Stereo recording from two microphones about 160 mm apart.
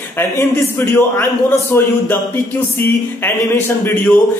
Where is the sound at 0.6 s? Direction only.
15° left (ahead or behind).